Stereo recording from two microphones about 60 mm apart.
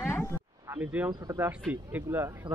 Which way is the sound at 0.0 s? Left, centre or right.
Left.